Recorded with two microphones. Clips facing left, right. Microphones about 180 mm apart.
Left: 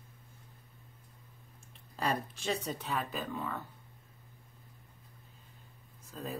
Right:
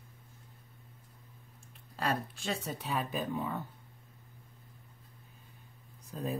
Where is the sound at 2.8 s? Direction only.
15° right (ahead or behind).